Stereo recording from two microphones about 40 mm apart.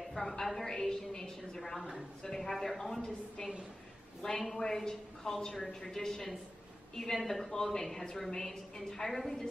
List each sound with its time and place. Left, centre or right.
0.1 s a woman's voice: centre
4.6 s a woman's voice: centre